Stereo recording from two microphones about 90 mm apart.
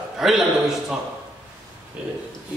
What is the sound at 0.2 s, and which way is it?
Speech, 5° right (ahead or behind).